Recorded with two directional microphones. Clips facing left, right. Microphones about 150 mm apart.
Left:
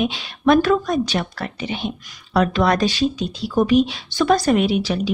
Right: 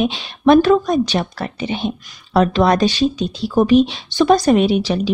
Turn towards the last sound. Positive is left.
turn(degrees=-25)  # may be behind; listen again after turning